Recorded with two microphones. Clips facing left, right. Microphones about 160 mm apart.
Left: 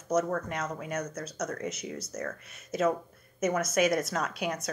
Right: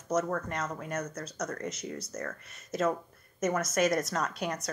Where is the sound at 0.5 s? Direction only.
10° left (ahead or behind).